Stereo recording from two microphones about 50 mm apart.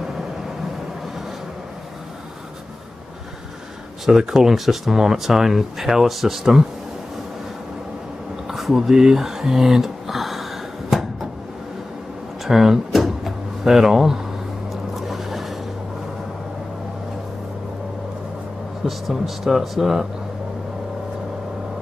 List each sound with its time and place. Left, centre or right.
4.0 s speech: centre
8.5 s a sound: centre
12.4 s drawer open or close: centre
14.7 s vehicle: centre
18.9 s speech: centre